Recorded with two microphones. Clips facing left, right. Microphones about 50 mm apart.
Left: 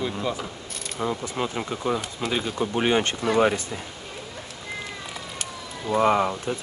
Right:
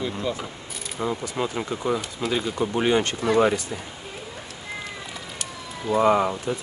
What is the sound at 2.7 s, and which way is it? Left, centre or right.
Speech, left.